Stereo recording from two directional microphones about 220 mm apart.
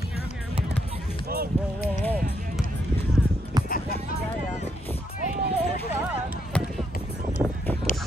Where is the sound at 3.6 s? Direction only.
40° left (ahead or behind).